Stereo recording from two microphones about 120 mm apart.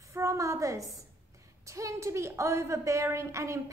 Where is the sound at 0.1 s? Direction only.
25° right (ahead or behind).